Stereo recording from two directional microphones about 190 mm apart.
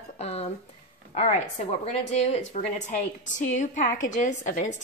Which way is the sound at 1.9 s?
35° left (ahead or behind).